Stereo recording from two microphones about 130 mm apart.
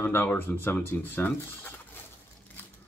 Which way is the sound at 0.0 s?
15° left (ahead or behind).